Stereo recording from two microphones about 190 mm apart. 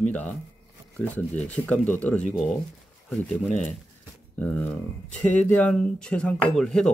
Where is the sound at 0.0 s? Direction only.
5° left (ahead or behind).